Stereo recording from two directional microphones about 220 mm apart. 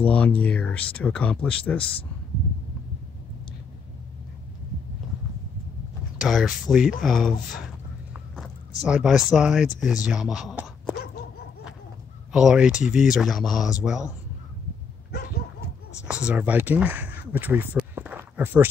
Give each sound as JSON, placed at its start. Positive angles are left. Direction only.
{"t": 0.0, "sound": "speech", "side_deg": 5}
{"t": 6.1, "sound": "speech", "side_deg": 0}
{"t": 12.3, "sound": "speech", "side_deg": -5}
{"t": 15.0, "sound": "dog", "side_deg": 45}
{"t": 16.1, "sound": "speech", "side_deg": -5}
{"t": 17.9, "sound": "a sound", "side_deg": -5}